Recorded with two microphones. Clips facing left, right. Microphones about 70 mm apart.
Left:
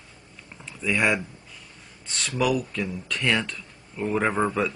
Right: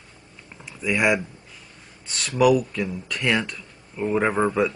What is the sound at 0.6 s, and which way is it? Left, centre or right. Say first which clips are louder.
Speech: right 2 dB; centre.